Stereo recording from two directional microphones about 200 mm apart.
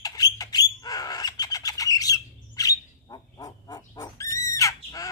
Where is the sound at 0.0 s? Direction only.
20° left (ahead or behind).